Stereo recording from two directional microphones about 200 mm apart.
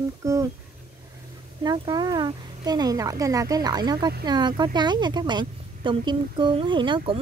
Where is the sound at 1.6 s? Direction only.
20° right (ahead or behind).